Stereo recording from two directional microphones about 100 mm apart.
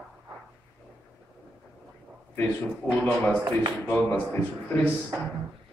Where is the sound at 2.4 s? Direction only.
15° left (ahead or behind).